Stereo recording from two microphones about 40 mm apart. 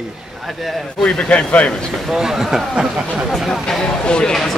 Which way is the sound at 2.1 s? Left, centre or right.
Centre.